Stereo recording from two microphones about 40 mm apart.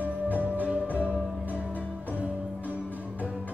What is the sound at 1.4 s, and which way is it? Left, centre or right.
Music, right.